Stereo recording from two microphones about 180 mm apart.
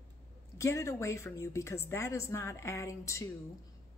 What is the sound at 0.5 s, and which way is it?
A woman's voice, 15° left (ahead or behind).